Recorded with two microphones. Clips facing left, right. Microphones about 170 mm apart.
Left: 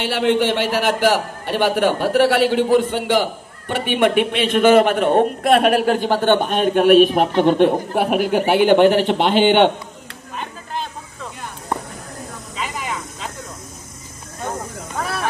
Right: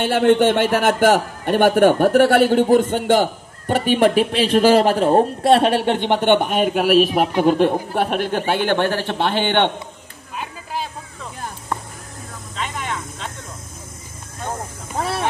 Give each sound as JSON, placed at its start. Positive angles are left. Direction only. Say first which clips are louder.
{"t": 0.0, "sound": "a man's voice", "louder": "right 3 dB", "side_deg": -50}
{"t": 10.3, "sound": "a sound", "louder": "even", "side_deg": -5}
{"t": 12.5, "sound": "vehicle", "louder": "even", "side_deg": 5}
{"t": 15.0, "sound": "snake", "louder": "right 2 dB", "side_deg": -25}